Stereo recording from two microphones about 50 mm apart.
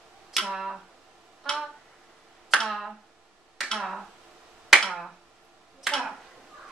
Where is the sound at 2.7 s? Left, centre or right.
Centre.